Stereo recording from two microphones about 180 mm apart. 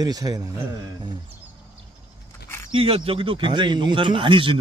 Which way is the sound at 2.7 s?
30° right (ahead or behind).